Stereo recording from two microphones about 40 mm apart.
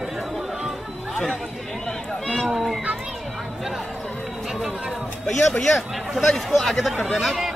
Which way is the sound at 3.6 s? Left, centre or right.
Centre.